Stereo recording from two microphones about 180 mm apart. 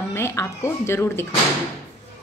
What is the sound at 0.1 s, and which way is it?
A woman's voice, 15° left (ahead or behind).